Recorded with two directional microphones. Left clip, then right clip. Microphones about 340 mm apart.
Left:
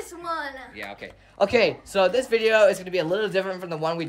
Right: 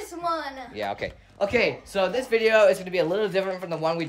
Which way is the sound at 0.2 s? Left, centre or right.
Centre.